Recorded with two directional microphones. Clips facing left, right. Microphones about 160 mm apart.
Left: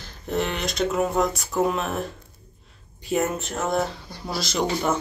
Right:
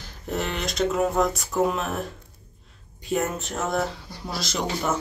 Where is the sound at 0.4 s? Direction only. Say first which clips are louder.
Left 1 dB; centre (ahead or behind).